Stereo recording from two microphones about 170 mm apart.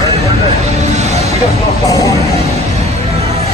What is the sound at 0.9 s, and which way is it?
Vehicle, 40° right (ahead or behind).